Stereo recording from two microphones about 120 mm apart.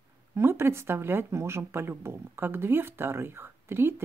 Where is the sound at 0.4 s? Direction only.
20° right (ahead or behind).